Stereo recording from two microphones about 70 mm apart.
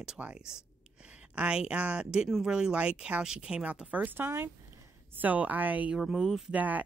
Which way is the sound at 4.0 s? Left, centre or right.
Right.